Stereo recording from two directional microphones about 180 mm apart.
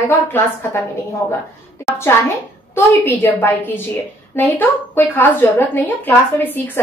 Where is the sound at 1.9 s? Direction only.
15° left (ahead or behind).